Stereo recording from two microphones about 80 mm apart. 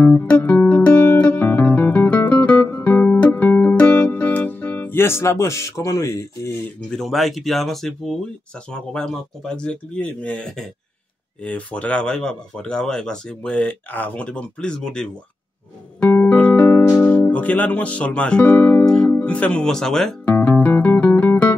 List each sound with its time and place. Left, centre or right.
0.0 s music: centre; by 6.5 s left
7.0 s speech: centre
16.2 s music: centre
18.9 s speech: centre
20.2 s music: left